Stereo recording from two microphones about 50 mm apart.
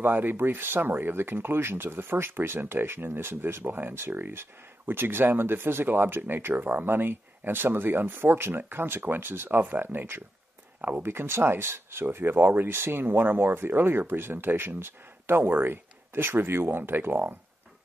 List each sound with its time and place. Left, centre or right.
0.0 s speech: right